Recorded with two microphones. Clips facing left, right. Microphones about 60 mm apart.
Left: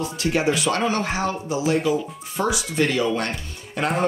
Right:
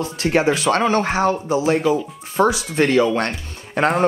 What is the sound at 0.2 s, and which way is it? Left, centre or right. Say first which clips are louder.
Speech: right 4 dB; right.